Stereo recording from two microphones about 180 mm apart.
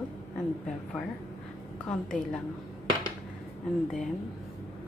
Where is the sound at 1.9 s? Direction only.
5° left (ahead or behind).